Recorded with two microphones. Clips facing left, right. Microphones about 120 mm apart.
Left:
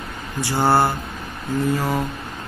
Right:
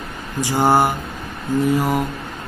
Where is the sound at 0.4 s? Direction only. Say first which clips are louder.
Right 2 dB; 15° right (ahead or behind).